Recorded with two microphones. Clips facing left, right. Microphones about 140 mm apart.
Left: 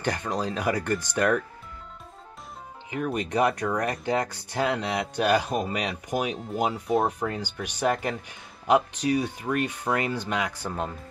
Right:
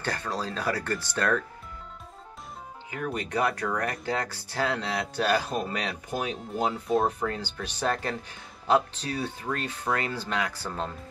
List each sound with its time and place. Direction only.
0.0 s speech: 15° left (ahead or behind)
2.9 s speech: 20° left (ahead or behind)